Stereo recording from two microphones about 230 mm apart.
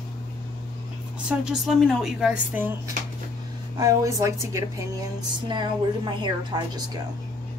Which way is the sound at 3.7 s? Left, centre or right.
Centre.